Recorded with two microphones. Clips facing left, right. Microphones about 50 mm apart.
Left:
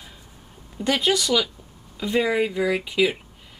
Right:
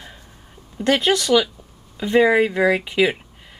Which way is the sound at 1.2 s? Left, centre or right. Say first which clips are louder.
Right 5 dB; centre.